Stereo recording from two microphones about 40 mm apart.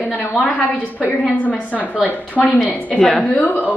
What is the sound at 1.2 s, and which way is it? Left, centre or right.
A woman's voice, left.